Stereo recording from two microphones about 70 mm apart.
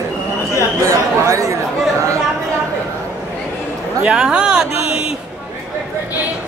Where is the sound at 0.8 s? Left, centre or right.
Right.